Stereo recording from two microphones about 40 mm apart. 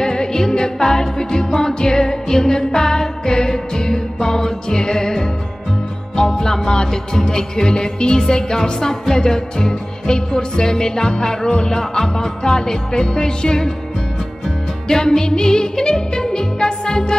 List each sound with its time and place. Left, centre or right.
0.0 s music: centre
14.9 s music: centre